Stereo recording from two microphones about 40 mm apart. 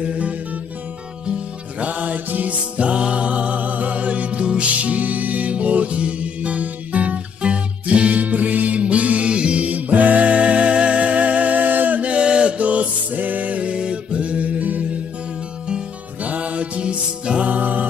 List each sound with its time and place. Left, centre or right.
0.0 s music: right
1.8 s music: right
2.8 s music: right
8.2 s music: right
12.5 s music: right
16.3 s music: right
17.5 s music: right